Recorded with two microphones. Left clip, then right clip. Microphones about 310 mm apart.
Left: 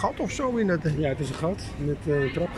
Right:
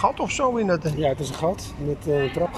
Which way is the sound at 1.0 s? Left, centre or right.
Right.